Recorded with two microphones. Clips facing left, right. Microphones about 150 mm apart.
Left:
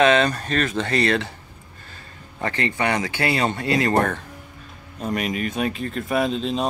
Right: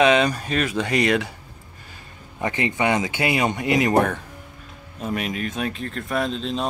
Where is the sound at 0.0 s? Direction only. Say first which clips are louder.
Even; 10° right (ahead or behind).